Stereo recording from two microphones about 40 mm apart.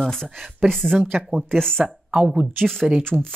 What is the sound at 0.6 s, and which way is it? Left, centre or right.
Speech, centre.